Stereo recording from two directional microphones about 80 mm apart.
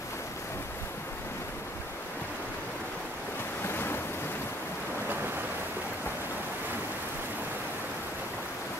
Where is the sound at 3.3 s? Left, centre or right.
Left.